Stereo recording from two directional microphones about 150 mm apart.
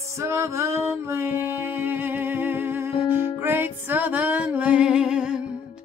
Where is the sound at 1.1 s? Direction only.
15° right (ahead or behind).